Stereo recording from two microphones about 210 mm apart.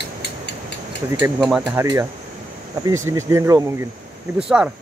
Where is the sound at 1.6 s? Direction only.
15° right (ahead or behind).